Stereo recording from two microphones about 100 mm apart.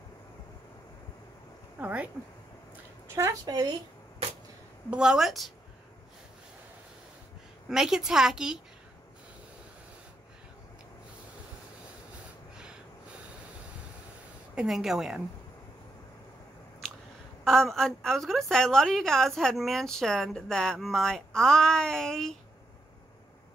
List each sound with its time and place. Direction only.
1.8 s speech: 15° right (ahead or behind)
3.1 s a sound: 25° right (ahead or behind)
3.4 s speech: 40° right (ahead or behind)
4.9 s a woman's voice: 5° right (ahead or behind)
7.7 s a woman's voice: 5° right (ahead or behind)
14.5 s a woman's voice: 5° right (ahead or behind)
17.5 s a woman's voice: 5° left (ahead or behind)